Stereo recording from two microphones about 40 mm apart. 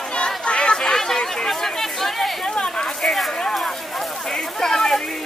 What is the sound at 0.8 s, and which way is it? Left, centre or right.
Chatter, centre.